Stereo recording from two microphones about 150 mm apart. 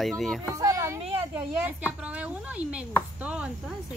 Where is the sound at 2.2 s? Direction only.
10° right (ahead or behind).